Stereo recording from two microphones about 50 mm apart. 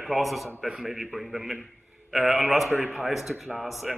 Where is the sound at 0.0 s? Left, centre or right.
Centre.